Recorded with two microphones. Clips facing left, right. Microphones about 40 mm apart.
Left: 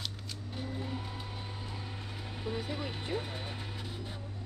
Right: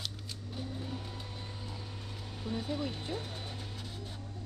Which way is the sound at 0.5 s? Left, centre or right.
Centre.